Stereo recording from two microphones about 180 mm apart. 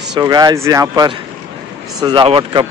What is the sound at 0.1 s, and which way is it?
Speech, 20° right (ahead or behind).